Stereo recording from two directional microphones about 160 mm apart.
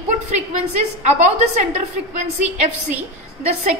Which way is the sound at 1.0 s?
45° right (ahead or behind).